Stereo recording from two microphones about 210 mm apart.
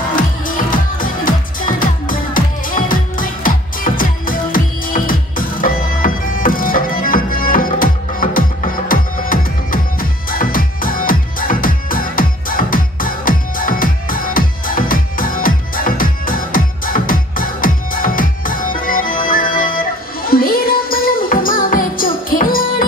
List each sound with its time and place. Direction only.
0.1 s music: 40° left (ahead or behind)